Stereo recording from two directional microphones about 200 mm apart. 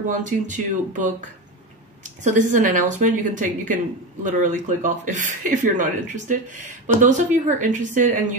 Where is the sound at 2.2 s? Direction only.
40° right (ahead or behind).